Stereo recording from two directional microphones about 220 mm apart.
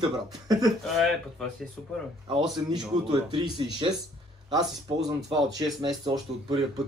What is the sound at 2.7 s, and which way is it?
Speech, 20° right (ahead or behind).